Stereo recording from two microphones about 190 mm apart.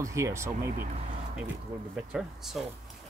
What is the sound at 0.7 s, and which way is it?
Speech, 50° right (ahead or behind).